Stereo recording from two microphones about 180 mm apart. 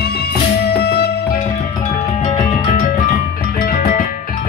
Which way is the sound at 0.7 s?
60° left (ahead or behind).